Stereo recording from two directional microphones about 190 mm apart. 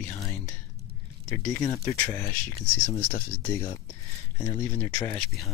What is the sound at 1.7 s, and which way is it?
Speech, 15° left (ahead or behind).